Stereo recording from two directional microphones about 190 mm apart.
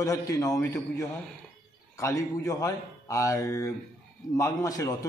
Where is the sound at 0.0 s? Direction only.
20° left (ahead or behind).